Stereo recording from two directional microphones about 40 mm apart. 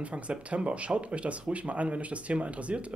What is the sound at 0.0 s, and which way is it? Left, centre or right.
Speech, right.